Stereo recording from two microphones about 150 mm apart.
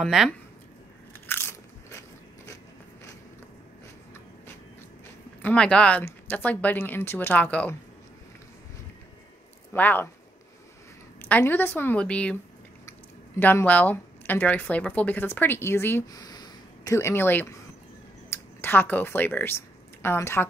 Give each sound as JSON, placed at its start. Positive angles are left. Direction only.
{"t": 0.0, "sound": "speech", "side_deg": 0}
{"t": 1.2, "sound": "biting", "side_deg": 15}
{"t": 5.4, "sound": "speech", "side_deg": 10}
{"t": 9.7, "sound": "speech", "side_deg": 10}
{"t": 11.1, "sound": "speech", "side_deg": 10}
{"t": 13.4, "sound": "speech", "side_deg": 10}
{"t": 16.2, "sound": "a sound", "side_deg": 25}
{"t": 18.3, "sound": "speech", "side_deg": 15}